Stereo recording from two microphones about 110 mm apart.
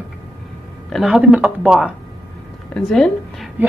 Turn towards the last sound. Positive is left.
turn(degrees=5)  # may be behind; listen again after turning